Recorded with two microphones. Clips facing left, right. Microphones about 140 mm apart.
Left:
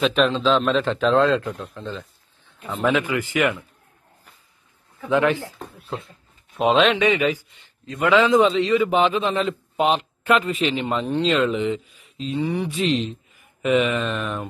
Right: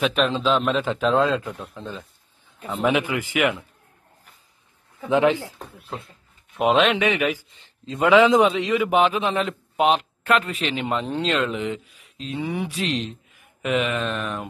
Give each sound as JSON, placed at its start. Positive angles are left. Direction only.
{"t": 0.0, "sound": "a man's voice", "side_deg": 0}
{"t": 5.1, "sound": "speech", "side_deg": -20}
{"t": 6.5, "sound": "a man's voice", "side_deg": -5}
{"t": 7.5, "sound": "a man's voice", "side_deg": -30}